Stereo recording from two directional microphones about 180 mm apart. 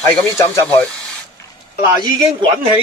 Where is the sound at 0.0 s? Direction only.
15° left (ahead or behind).